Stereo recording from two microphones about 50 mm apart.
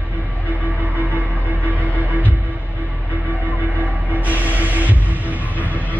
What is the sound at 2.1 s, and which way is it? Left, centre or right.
Music, right.